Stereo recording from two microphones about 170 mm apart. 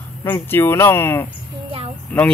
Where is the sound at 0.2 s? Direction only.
15° left (ahead or behind).